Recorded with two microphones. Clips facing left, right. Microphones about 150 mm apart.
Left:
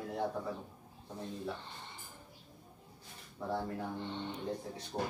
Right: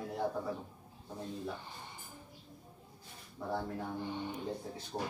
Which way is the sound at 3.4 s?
5° right (ahead or behind).